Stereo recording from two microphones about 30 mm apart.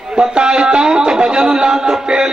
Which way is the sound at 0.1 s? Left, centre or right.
Right.